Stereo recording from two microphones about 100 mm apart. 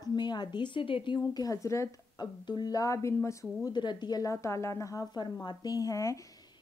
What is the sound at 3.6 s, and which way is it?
Speech, 50° left (ahead or behind).